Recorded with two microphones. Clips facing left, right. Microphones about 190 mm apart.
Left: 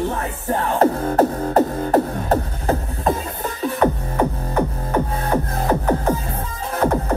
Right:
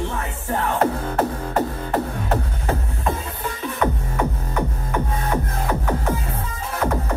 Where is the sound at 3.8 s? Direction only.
35° left (ahead or behind).